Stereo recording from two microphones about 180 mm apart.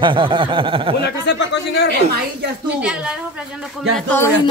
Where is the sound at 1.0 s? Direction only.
70° left (ahead or behind).